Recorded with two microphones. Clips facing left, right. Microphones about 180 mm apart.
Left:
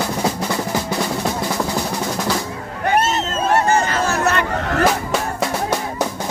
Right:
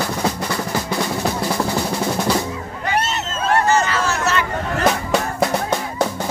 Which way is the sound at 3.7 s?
55° left (ahead or behind).